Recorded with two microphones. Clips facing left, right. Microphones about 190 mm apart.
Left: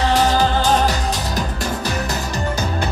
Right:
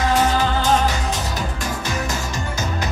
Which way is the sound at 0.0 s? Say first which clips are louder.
Left 2 dB; 35° left (ahead or behind).